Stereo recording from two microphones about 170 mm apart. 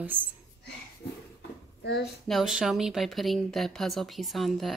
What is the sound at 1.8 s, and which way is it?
Speech, 80° left.